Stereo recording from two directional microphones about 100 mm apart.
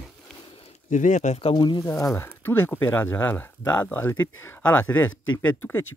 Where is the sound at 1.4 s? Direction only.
60° left (ahead or behind).